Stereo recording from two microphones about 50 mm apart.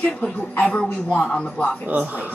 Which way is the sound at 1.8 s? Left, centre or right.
Right.